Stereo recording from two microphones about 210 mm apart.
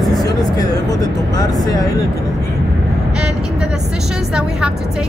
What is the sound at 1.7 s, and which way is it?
Speech, 15° left (ahead or behind).